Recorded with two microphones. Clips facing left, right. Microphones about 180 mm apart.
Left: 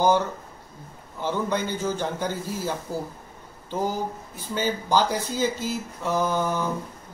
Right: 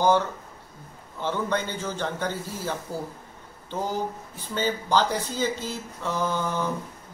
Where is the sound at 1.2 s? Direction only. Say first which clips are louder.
Left 1 dB; 10° left (ahead or behind).